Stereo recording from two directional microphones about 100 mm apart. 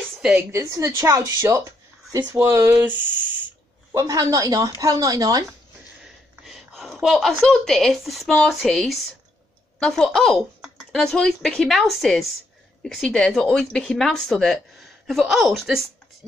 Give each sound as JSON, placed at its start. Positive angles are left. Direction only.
{"t": 0.4, "sound": "speech", "side_deg": -25}
{"t": 3.9, "sound": "speech", "side_deg": -35}
{"t": 6.0, "sound": "a sound", "side_deg": 0}
{"t": 8.4, "sound": "speech", "side_deg": 5}